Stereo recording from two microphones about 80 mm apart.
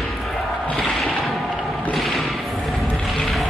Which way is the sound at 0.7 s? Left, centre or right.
Centre.